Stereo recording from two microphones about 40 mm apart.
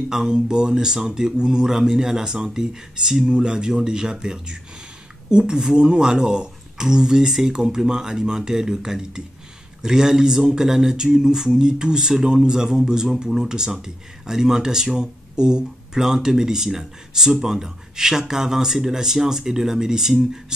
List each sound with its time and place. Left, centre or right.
0.1 s speech: centre